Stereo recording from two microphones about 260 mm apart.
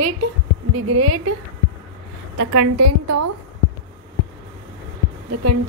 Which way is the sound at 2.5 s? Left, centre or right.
Right.